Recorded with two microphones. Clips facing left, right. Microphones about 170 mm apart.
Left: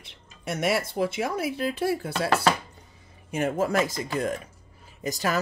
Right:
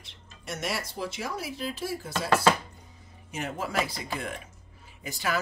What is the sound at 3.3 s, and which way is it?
Speech, 50° left (ahead or behind).